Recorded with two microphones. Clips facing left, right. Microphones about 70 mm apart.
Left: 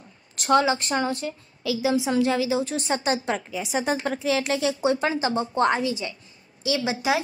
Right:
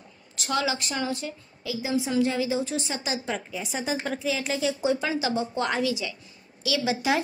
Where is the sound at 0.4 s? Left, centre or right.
Left.